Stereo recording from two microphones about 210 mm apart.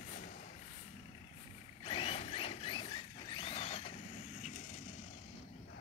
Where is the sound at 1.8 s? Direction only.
25° left (ahead or behind).